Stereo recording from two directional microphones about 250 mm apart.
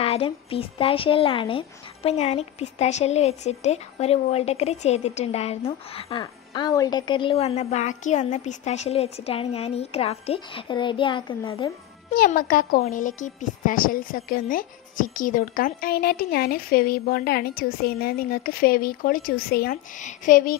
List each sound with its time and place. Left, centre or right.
0.0 s a woman's voice: left
12.1 s speech: left